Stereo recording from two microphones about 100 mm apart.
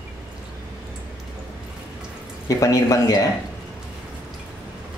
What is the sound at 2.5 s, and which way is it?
Speech, 35° left (ahead or behind).